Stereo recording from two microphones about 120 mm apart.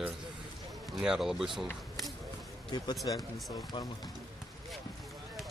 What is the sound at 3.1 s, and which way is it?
Speech, 40° left (ahead or behind).